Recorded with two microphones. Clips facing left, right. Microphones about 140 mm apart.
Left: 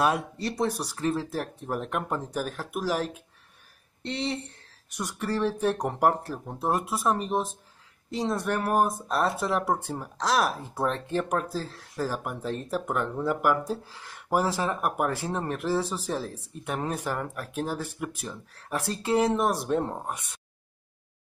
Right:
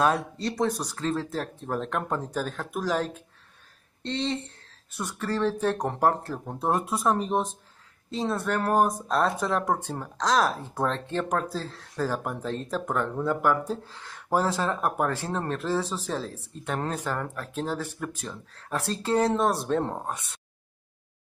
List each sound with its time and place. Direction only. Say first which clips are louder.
0.4 s speech: right 1 dB; 10° left (ahead or behind)
6.4 s speech: right 1 dB; centre (ahead or behind)
8.1 s speech: even; 15° left (ahead or behind)
19.8 s speech: right 1 dB; 15° right (ahead or behind)